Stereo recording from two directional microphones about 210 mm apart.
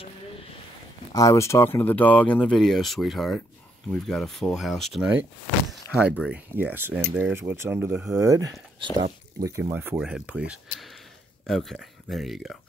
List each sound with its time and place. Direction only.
1.1 s speech: 15° left (ahead or behind); by 5.2 s centre (ahead or behind)
5.7 s a sound: 5° right (ahead or behind)
6.1 s speech: 5° right (ahead or behind)
8.2 s speech: 15° right (ahead or behind); by 12.5 s centre (ahead or behind)